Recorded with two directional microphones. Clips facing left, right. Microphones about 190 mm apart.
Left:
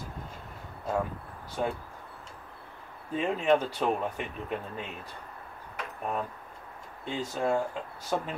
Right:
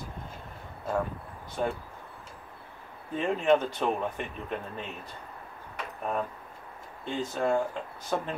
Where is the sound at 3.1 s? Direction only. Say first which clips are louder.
Right 1 dB; 5° left (ahead or behind).